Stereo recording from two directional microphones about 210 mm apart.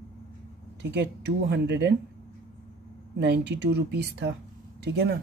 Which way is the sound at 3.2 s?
55° right (ahead or behind).